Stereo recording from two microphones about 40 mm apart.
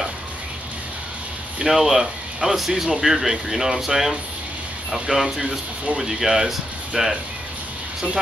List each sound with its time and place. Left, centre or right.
1.6 s speech: centre